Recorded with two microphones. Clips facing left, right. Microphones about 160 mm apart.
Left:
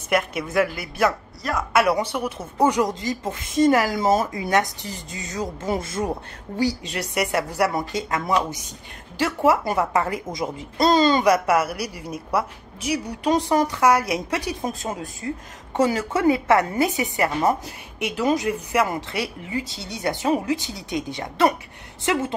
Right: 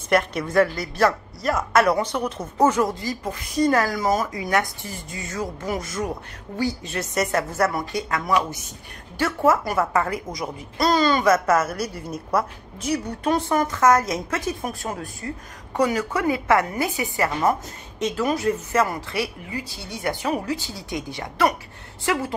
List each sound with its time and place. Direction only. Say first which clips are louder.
0.1 s speech: right 2 dB; 5° left (ahead or behind); by 6.1 s 25° left (ahead or behind)
6.8 s a woman's voice: right 1 dB; 15° left (ahead or behind)